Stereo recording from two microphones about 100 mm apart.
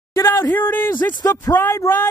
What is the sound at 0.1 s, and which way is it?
Speech, 25° left (ahead or behind).